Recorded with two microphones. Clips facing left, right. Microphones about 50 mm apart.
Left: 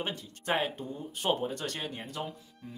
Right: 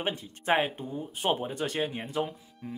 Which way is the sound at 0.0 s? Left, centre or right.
Right.